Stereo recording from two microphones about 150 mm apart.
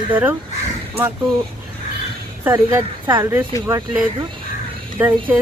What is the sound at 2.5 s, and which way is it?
Speech, 20° right (ahead or behind).